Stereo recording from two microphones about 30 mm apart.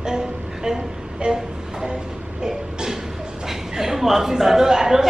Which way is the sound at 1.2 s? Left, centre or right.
Right.